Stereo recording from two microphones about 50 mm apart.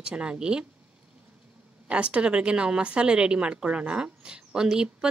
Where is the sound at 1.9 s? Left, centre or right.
Right.